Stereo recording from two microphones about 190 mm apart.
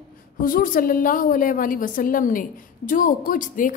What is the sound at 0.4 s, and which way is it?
A woman's voice, 45° left (ahead or behind).